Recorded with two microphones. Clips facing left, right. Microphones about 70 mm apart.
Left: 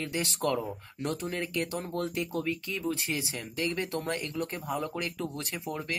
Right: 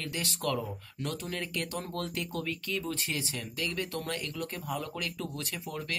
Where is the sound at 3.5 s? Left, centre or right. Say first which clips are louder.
Left 4 dB; left.